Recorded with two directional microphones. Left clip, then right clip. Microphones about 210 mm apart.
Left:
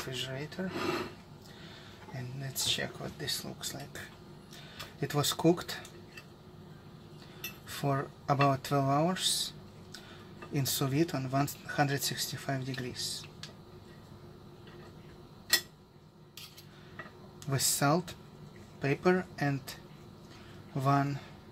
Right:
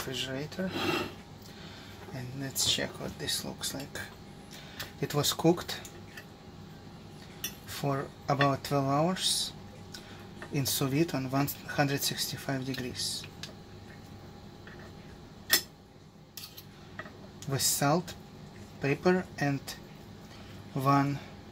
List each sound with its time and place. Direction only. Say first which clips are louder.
0.1 s speech: right 4 dB; 5° left (ahead or behind)
2.1 s speech: right 4 dB; 5° left (ahead or behind)
5.0 s speech: right 1 dB; 10° left (ahead or behind)
7.8 s speech: even; 15° left (ahead or behind)
10.5 s speech: right 2 dB; 10° left (ahead or behind)
17.5 s speech: right 1 dB; 15° left (ahead or behind)
20.8 s speech: right 3 dB; 10° left (ahead or behind)